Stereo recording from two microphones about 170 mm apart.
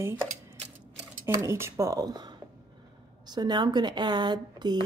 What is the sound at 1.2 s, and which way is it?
Speech, 15° right (ahead or behind).